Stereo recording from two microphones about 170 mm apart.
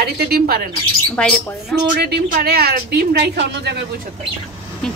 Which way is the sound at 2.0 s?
70° right (ahead or behind).